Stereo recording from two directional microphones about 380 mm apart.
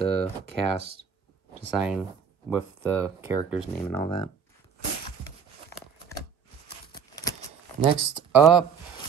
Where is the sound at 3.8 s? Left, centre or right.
Centre.